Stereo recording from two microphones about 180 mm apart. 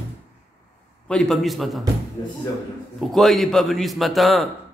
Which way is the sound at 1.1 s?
Centre (ahead or behind).